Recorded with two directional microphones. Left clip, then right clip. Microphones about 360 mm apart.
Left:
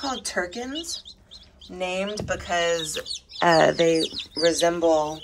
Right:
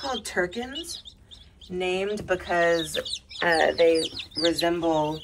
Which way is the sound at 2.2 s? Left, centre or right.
Centre.